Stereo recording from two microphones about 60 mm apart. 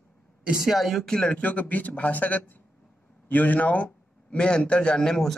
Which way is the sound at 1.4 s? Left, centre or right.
Left.